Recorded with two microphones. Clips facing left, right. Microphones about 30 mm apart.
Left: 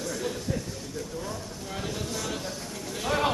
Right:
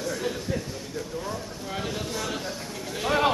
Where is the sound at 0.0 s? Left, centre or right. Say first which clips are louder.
Right 2 dB; centre.